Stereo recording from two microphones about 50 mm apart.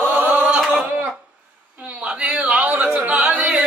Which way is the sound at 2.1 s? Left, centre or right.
Right.